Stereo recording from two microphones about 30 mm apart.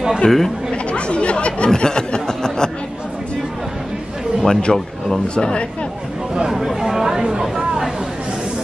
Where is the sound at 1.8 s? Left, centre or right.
Left.